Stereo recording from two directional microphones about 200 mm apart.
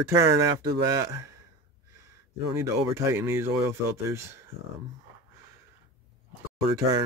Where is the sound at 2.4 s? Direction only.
15° right (ahead or behind).